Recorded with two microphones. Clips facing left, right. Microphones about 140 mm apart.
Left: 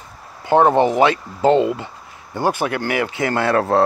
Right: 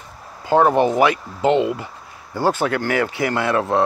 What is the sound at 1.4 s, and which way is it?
Speech, 35° left (ahead or behind).